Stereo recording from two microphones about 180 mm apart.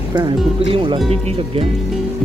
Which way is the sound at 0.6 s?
30° right (ahead or behind).